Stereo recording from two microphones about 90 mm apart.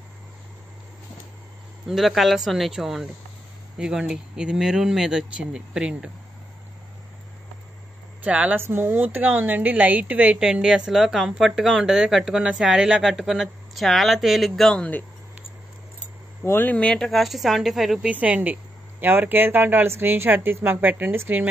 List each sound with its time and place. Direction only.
1.9 s a woman's voice: centre (ahead or behind)
8.2 s a woman's voice: 15° right (ahead or behind); by 15.0 s 15° left (ahead or behind)
16.4 s speech: 25° left (ahead or behind)
16.7 s a woman's voice: 10° left (ahead or behind)
18.0 s speech: 15° right (ahead or behind)